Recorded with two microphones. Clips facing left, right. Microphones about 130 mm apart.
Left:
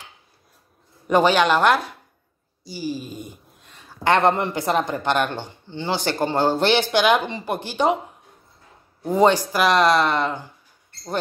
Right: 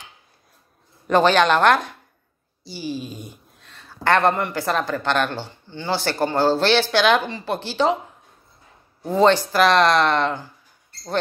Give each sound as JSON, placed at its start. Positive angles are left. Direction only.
{"t": 1.0, "sound": "speech", "side_deg": 10}
{"t": 2.9, "sound": "speech", "side_deg": 10}
{"t": 9.0, "sound": "speech", "side_deg": 15}